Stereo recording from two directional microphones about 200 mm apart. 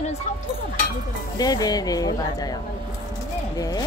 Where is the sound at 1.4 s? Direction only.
20° left (ahead or behind).